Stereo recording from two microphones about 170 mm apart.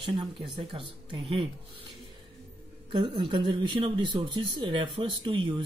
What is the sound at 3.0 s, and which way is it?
Speech, 30° right (ahead or behind).